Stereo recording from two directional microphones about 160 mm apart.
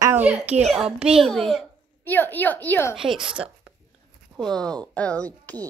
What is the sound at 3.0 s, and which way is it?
A woman's voice, 5° right (ahead or behind).